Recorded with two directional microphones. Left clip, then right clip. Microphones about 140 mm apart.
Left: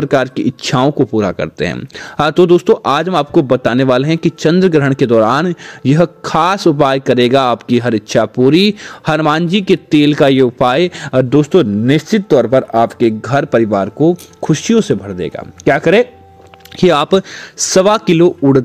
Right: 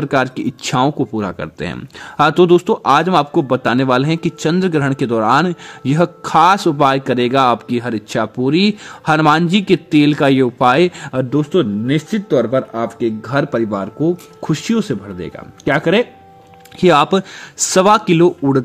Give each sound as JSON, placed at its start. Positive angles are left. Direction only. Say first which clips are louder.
{"t": 0.0, "sound": "speech", "louder": "left 3 dB", "side_deg": 30}
{"t": 11.2, "sound": "speech", "louder": "left 4 dB", "side_deg": 60}